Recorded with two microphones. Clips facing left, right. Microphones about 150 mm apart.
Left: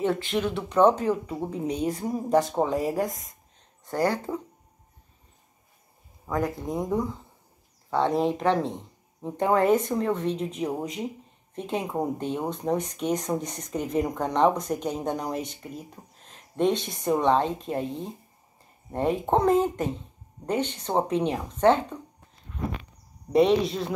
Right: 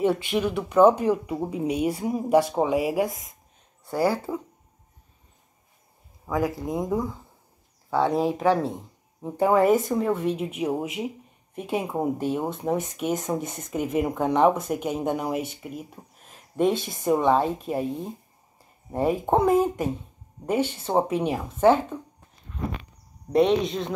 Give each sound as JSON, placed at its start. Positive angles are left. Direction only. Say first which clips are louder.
{"t": 0.0, "sound": "speech", "louder": "right 2 dB", "side_deg": -10}
{"t": 6.2, "sound": "speech", "louder": "right 2 dB", "side_deg": 0}
{"t": 23.3, "sound": "speech", "louder": "even", "side_deg": 0}